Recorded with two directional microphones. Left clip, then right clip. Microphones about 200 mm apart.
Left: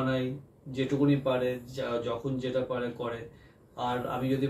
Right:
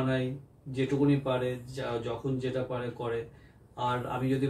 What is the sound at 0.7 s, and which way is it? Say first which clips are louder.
Speech: even; centre (ahead or behind).